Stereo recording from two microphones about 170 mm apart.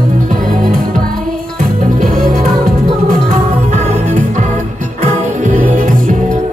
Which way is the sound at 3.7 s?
45° right (ahead or behind).